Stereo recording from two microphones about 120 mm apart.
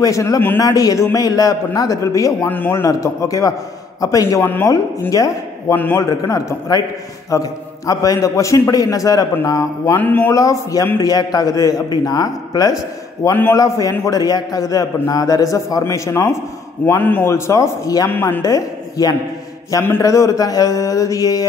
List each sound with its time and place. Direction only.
0.0 s a man's voice: 30° left (ahead or behind)
2.5 s speech: 15° left (ahead or behind)
2.8 s a man's voice: 25° left (ahead or behind)
4.5 s a man's voice: 15° left (ahead or behind)
5.8 s speech: 15° left (ahead or behind)
6.0 s a man's voice: 30° left (ahead or behind)
9.9 s speech: 15° left (ahead or behind)
10.3 s a man's voice: 30° left (ahead or behind)
18.1 s speech: 15° left (ahead or behind)
18.4 s a man's voice: 30° left (ahead or behind)